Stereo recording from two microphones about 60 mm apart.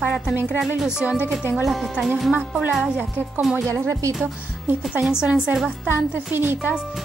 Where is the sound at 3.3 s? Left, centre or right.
Centre.